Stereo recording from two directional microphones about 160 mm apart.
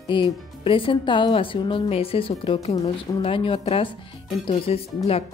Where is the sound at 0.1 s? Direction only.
30° left (ahead or behind).